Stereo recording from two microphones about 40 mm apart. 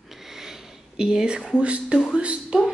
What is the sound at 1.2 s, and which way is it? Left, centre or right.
Speech, right.